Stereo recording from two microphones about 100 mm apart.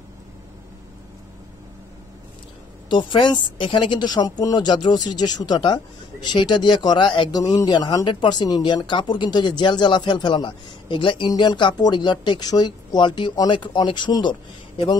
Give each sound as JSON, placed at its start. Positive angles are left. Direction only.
{"t": 2.9, "sound": "speech", "side_deg": 50}